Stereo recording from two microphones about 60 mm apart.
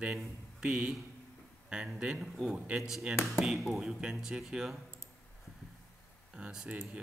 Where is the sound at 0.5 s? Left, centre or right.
Centre.